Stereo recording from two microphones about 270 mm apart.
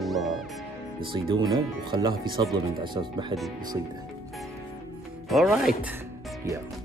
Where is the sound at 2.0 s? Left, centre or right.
Centre.